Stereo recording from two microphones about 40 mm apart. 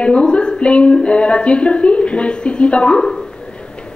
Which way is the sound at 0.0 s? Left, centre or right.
Left.